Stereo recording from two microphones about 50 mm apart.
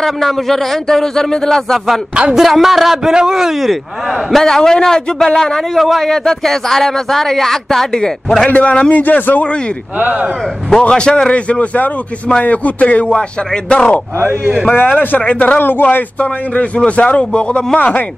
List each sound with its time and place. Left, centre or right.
0.0 s speech: centre
2.3 s a man's voice: centre
4.3 s speech: centre
5.8 s a man's voice: centre
6.0 s speech: centre
8.5 s a man's voice: left
8.9 s a man's voice: left
9.9 s speech: right
10.8 s a man's voice: centre
14.7 s a man's voice: left
15.2 s a man's voice: left
15.6 s a man's voice: left
16.2 s a man's voice: left
17.7 s a man's voice: left